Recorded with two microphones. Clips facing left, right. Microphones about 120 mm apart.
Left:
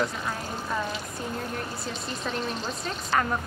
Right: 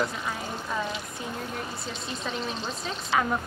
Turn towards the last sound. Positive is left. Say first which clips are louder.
# even
turn(degrees=-5)  # may be behind; listen again after turning